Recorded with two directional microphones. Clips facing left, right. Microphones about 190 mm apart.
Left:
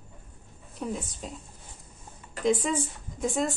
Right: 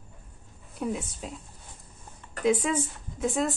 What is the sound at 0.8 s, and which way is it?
Speech, 5° right (ahead or behind).